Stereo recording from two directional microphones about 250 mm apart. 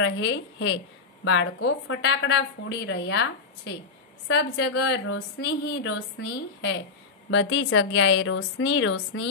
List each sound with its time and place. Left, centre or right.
0.0 s a woman's voice: left